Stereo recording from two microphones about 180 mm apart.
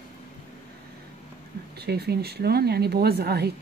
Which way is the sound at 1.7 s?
60° right (ahead or behind).